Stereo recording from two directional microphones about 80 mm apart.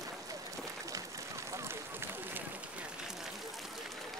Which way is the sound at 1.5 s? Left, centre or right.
Right.